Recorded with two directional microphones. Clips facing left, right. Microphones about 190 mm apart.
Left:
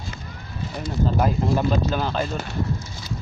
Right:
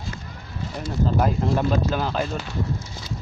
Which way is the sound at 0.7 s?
5° left (ahead or behind).